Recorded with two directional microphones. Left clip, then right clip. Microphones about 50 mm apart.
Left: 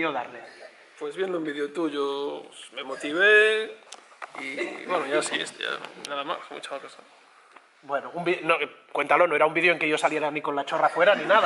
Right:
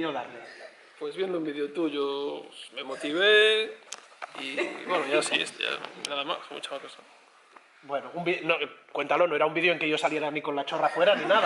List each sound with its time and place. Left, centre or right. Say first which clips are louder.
0.0 s a man's voice: left 4 dB; left
0.9 s speech: left 2 dB; centre
1.3 s speech: left 2 dB; centre
8.2 s a man's voice: left 3 dB; centre